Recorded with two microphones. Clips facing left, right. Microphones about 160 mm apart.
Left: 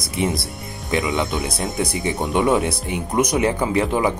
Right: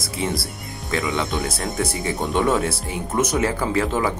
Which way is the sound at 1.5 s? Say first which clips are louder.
Left 1 dB; 15° left (ahead or behind).